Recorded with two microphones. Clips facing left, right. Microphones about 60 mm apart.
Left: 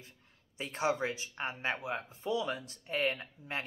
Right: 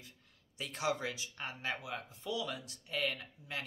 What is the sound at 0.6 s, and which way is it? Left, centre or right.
Speech, left.